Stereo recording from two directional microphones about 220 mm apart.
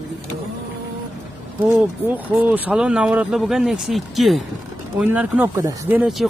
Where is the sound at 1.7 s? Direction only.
10° right (ahead or behind).